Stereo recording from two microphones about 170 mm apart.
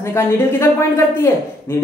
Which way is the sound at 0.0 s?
15° left (ahead or behind).